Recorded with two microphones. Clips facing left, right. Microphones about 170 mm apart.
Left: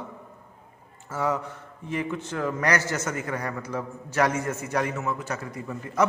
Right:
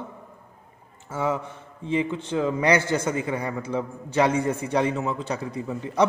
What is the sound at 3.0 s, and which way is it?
Speech, 10° right (ahead or behind).